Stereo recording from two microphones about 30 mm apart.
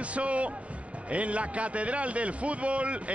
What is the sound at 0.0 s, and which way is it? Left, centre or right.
A man's voice, right.